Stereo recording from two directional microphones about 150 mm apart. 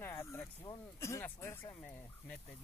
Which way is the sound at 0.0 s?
15° left (ahead or behind).